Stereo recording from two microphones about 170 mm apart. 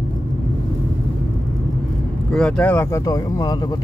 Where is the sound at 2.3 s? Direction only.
5° left (ahead or behind); by 3.7 s 25° left (ahead or behind).